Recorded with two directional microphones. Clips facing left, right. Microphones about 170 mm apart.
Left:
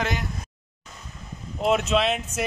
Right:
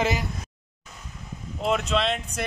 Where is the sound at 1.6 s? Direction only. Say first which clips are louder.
Left 3 dB; 5° left (ahead or behind).